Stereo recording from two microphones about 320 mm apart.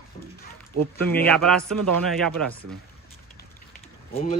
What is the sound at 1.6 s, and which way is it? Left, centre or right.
Speech, right.